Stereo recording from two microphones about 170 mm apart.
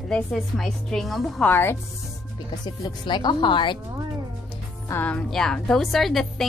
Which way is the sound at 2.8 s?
25° left (ahead or behind).